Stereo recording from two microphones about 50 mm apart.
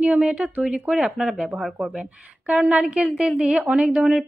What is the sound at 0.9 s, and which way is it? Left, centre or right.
A woman's voice, centre.